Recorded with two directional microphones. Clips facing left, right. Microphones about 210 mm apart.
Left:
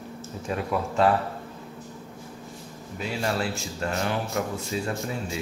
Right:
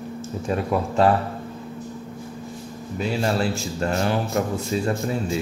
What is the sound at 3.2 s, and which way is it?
Speech, 30° right (ahead or behind).